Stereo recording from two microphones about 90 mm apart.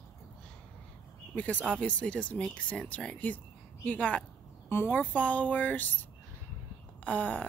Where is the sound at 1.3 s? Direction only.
15° left (ahead or behind).